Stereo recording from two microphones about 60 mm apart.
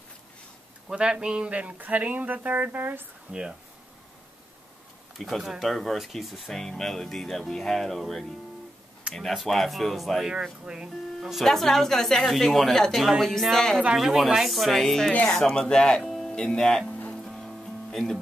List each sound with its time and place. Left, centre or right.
0.8 s speech: centre; by 3.1 s right
3.3 s speech: centre
5.4 s speech: centre
10.2 s speech: centre
11.1 s speech: centre
17.2 s music: centre